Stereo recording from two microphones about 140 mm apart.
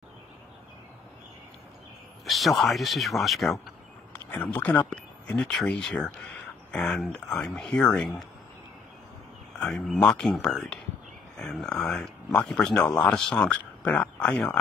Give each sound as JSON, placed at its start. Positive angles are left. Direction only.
{"t": 2.2, "sound": "speech", "side_deg": 0}
{"t": 4.1, "sound": "speech", "side_deg": 15}
{"t": 9.6, "sound": "speech", "side_deg": 5}